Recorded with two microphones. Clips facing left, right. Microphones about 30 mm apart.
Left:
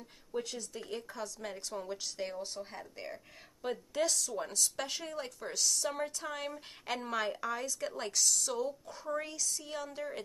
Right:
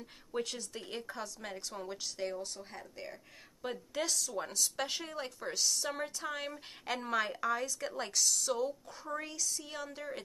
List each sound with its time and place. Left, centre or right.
0.7 s a woman's voice: right
1.2 s a woman's voice: centre
3.6 s a woman's voice: centre